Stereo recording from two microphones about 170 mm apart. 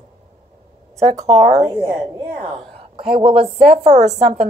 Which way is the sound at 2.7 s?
35° right (ahead or behind).